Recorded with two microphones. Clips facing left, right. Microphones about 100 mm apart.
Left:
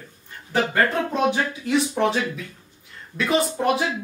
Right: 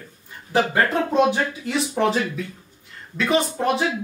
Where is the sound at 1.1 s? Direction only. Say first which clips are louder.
Right 3 dB; centre (ahead or behind).